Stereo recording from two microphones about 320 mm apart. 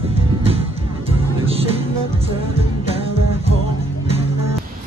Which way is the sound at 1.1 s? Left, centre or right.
Centre.